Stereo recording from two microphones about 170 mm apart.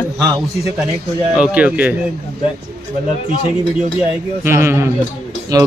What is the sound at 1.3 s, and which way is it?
Speech, 5° right (ahead or behind).